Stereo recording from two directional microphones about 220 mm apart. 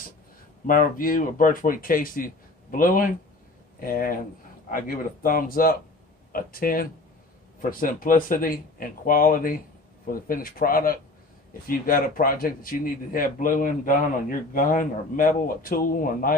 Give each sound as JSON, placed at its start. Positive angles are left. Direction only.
{"t": 0.7, "sound": "speech", "side_deg": 40}